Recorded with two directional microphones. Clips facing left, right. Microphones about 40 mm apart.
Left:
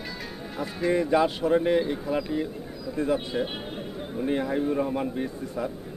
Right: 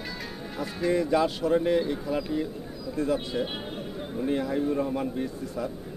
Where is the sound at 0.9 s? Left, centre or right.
Left.